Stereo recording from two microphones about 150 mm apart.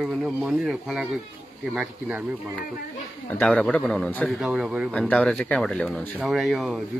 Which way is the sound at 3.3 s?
10° left (ahead or behind).